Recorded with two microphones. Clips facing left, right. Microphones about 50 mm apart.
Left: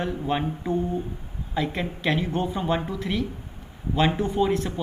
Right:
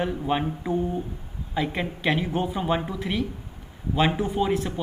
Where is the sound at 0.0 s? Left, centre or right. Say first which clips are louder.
Right 1 dB; centre.